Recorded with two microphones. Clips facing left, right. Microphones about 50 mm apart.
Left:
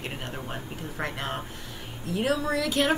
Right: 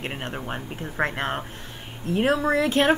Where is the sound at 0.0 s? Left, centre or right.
Right.